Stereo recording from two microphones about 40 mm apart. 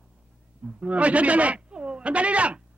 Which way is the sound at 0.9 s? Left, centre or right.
Right.